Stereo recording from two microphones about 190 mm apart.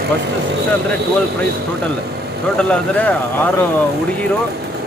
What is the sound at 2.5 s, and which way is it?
Speech, 10° left (ahead or behind).